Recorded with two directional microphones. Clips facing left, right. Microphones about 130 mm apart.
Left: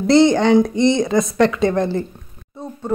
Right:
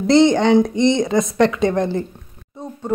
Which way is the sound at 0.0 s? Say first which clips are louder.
Even; 20° right (ahead or behind).